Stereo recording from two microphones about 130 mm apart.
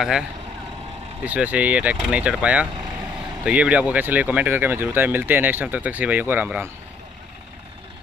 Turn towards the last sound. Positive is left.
turn(degrees=-10)  # may be behind; listen again after turning